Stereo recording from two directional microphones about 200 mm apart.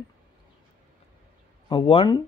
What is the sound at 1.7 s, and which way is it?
Speech, 25° left (ahead or behind).